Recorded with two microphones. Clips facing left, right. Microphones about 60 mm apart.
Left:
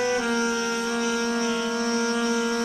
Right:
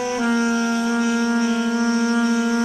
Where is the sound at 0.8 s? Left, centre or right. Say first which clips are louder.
Right 5 dB; centre.